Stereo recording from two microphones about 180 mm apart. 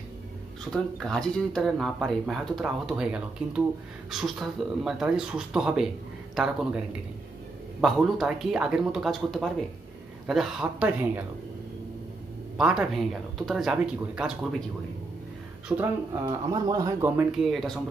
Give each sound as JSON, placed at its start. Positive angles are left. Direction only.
{"t": 0.7, "sound": "speech", "side_deg": 5}
{"t": 7.8, "sound": "speech", "side_deg": 0}
{"t": 12.5, "sound": "speech", "side_deg": -5}
{"t": 15.8, "sound": "speech", "side_deg": -20}
{"t": 17.2, "sound": "speech", "side_deg": 0}